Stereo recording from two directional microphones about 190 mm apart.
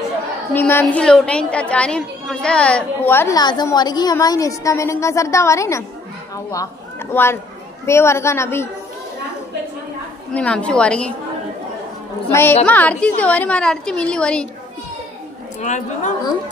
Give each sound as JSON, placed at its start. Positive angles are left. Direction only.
{"t": 0.5, "sound": "a woman's voice", "side_deg": 10}
{"t": 10.3, "sound": "a woman's voice", "side_deg": 5}
{"t": 12.3, "sound": "a woman's voice", "side_deg": 10}
{"t": 15.6, "sound": "a woman's voice", "side_deg": 40}